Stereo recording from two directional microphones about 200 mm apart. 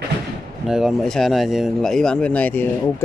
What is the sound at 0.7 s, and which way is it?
Speech, centre (ahead or behind).